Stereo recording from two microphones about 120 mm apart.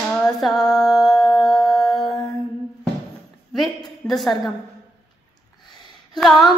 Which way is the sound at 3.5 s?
Centre (ahead or behind).